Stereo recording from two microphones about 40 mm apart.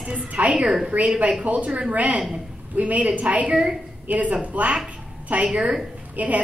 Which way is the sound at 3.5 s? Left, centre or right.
Right.